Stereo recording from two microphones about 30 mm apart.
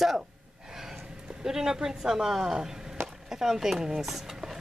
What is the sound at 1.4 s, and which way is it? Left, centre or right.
Speech, centre.